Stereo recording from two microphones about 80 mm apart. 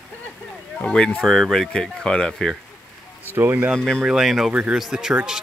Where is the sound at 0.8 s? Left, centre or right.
Centre.